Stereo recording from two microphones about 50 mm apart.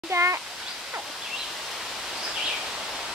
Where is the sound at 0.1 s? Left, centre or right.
Right.